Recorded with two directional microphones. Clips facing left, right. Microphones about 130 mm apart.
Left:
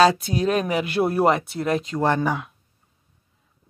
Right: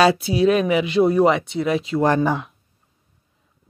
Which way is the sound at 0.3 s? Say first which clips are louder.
Right 5 dB; 40° left (ahead or behind).